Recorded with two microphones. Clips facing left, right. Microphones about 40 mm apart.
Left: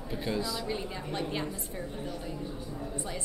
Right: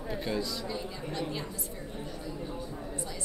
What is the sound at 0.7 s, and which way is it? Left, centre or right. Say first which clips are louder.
Speech: left 2 dB; left.